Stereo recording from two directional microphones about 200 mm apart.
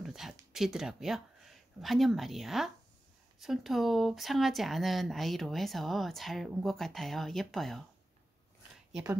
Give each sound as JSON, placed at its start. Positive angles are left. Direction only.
{"t": 0.0, "sound": "speech", "side_deg": 0}